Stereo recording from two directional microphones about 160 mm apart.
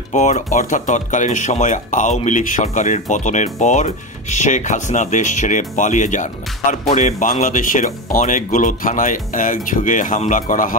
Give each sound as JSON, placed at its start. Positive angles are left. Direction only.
{"t": 0.1, "sound": "speech", "side_deg": 50}